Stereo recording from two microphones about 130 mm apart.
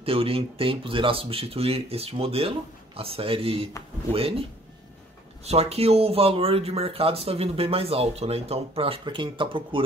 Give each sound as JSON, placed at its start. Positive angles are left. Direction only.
{"t": 0.0, "sound": "speech", "side_deg": -45}